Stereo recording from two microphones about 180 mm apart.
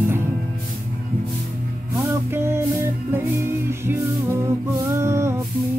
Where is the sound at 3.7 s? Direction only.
15° right (ahead or behind).